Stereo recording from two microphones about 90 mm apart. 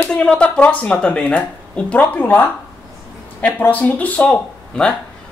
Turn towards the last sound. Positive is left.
turn(degrees=10)  # may be behind; listen again after turning